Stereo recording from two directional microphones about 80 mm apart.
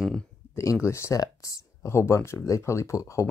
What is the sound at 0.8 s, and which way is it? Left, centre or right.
Speech, left.